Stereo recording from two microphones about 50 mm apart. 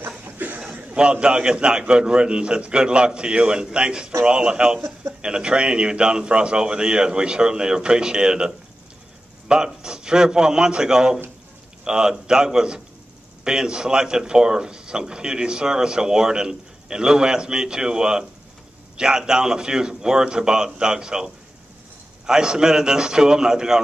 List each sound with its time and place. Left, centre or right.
0.2 s a sound: right
0.9 s a man's voice: centre
9.8 s speech: centre